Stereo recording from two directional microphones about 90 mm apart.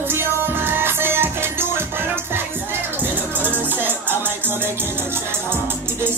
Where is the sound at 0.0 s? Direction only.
25° right (ahead or behind).